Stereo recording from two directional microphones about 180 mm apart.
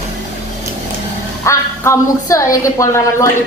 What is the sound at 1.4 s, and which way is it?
A woman's voice, 15° left (ahead or behind).